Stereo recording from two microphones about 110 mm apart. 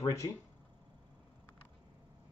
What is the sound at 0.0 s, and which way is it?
Speech, 30° left (ahead or behind).